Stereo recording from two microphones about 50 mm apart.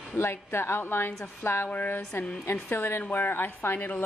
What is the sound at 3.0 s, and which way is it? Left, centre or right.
Speech, left.